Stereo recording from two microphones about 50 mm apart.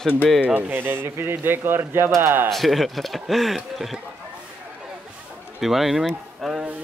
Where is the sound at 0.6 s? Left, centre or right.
Right.